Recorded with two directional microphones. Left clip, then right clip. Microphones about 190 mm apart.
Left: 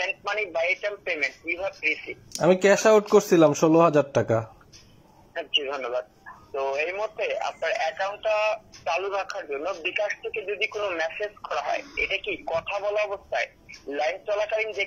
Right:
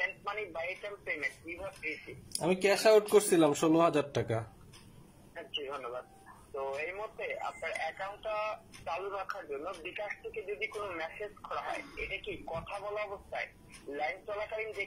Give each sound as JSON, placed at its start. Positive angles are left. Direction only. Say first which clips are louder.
{"t": 0.0, "sound": "speech", "louder": "left 9 dB", "side_deg": 20}
{"t": 2.4, "sound": "a man's voice", "louder": "left 9 dB", "side_deg": 0}
{"t": 5.3, "sound": "speech", "louder": "left 13 dB", "side_deg": 20}